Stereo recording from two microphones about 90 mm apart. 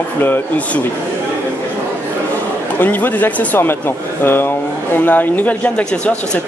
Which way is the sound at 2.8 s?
20° left (ahead or behind).